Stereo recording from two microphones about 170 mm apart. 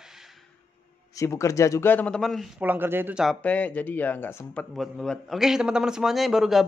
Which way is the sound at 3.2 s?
10° left (ahead or behind).